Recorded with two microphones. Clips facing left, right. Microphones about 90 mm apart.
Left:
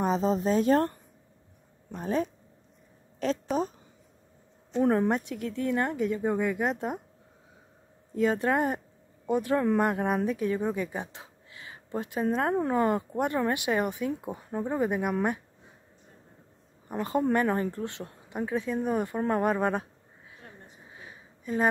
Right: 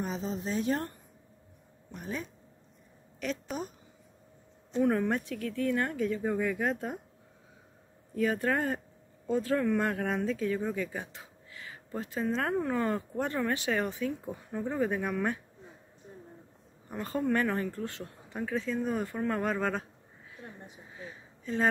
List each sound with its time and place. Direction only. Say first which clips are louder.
0.0 s speech: left 9 dB; 40° left (ahead or behind)
4.7 s speech: left 3 dB; 30° left (ahead or behind)
8.3 s speech: left 4 dB; 25° left (ahead or behind)
17.0 s speech: left 4 dB; 20° left (ahead or behind)
20.9 s a sound: right 3 dB; 10° left (ahead or behind)